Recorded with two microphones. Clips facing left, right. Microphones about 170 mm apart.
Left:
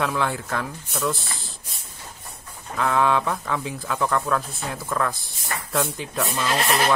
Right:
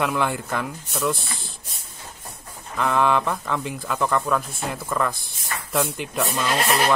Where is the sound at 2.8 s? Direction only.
Centre (ahead or behind).